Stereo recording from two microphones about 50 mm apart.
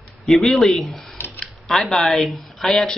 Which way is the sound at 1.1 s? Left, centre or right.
Left.